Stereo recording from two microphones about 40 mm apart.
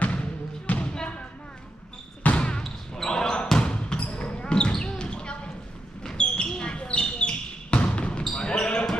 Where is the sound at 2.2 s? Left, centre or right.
Left.